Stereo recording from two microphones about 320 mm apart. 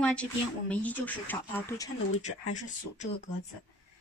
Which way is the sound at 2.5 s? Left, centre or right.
Left.